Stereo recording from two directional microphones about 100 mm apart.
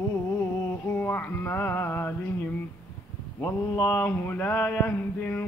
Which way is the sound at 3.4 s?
25° left (ahead or behind).